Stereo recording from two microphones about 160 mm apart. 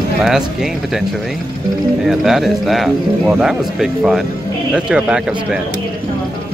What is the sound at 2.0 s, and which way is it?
Speech, centre (ahead or behind).